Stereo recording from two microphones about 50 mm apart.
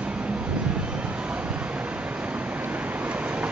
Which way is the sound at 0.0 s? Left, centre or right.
Right.